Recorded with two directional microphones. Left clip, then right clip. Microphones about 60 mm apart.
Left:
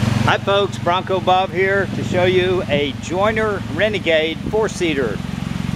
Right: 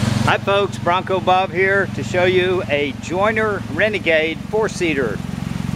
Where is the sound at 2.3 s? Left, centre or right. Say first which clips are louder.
Even; centre.